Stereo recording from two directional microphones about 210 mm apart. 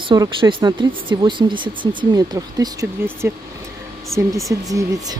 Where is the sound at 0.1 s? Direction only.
20° right (ahead or behind).